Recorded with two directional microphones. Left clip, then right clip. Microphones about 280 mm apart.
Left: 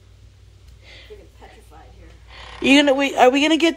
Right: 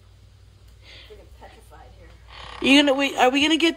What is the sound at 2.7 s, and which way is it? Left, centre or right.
Speech, centre.